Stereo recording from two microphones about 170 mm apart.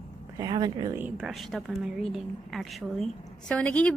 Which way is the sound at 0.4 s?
25° right (ahead or behind).